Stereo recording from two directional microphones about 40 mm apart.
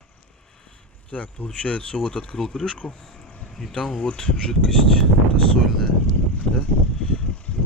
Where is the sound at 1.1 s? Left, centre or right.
Left.